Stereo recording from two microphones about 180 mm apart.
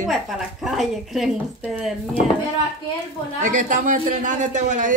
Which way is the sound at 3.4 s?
45° right (ahead or behind).